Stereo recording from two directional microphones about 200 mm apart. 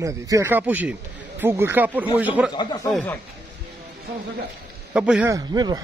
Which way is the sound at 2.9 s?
10° left (ahead or behind).